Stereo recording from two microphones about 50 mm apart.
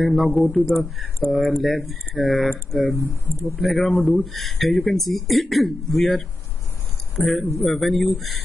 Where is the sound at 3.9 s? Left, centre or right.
Left.